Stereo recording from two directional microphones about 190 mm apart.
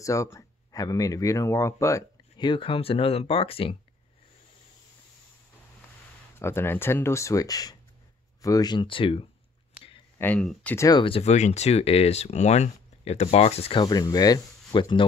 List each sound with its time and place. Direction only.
0.0 s speech: 15° left (ahead or behind)
6.3 s speech: 10° left (ahead or behind); by 9.3 s 30° left (ahead or behind)
10.1 s speech: 10° left (ahead or behind)
10.9 s speech: 25° left (ahead or behind)